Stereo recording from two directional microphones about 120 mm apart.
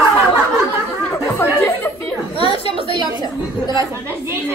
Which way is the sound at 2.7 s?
45° right (ahead or behind).